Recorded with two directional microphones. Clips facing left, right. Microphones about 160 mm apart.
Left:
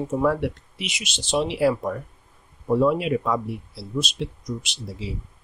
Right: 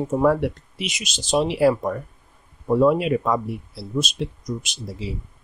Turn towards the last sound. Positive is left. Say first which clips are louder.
# right 2 dB
turn(degrees=-45)  # may be behind; listen again after turning